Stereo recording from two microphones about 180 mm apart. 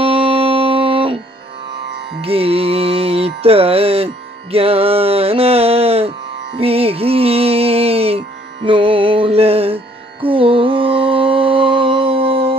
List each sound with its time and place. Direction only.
0.0 s music: 30° right (ahead or behind)
2.2 s music: 35° right (ahead or behind)
10.2 s mantra: 30° right (ahead or behind)